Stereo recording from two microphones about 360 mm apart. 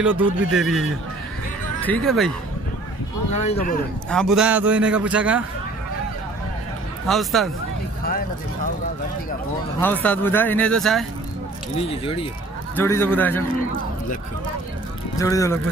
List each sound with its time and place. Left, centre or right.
0.0 s a man's voice: centre
3.3 s speech: left
4.1 s a man's voice: centre
7.1 s a man's voice: centre
8.0 s speech: left
9.9 s a man's voice: centre
11.9 s a man's voice: centre
15.1 s speech: centre